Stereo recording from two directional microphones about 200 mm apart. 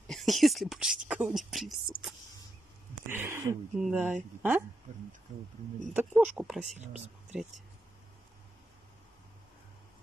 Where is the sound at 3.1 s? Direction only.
10° right (ahead or behind).